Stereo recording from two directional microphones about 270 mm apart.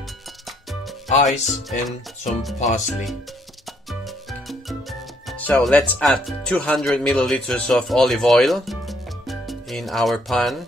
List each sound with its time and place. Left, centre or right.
1.1 s speech: left
1.4 s speech: centre
2.6 s speech: left
4.3 s music: centre
5.4 s speech: centre